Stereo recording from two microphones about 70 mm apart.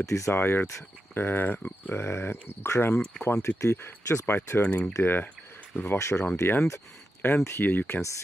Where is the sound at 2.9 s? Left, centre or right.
Centre.